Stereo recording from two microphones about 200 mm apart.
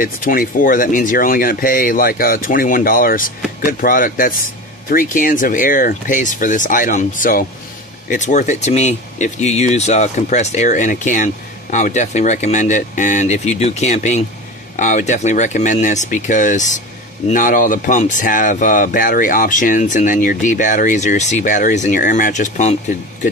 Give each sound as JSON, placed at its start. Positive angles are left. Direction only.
{"t": 0.0, "sound": "speech", "side_deg": 45}